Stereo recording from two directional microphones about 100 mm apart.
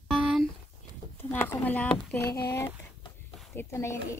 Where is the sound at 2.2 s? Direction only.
30° left (ahead or behind).